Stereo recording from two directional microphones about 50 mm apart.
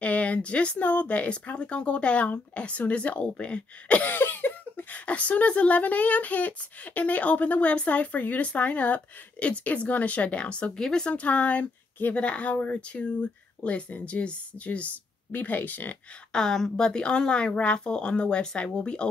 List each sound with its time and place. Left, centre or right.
0.0 s speech: left
4.1 s cough: left
4.9 s speech: left
11.1 s speech: left
16.3 s a woman's voice: centre